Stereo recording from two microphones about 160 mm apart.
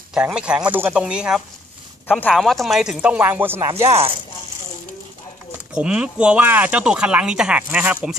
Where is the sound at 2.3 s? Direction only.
Centre (ahead or behind); by 3.8 s 15° right (ahead or behind).